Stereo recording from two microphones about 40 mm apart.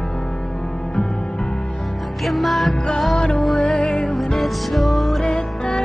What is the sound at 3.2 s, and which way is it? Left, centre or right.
Music, left.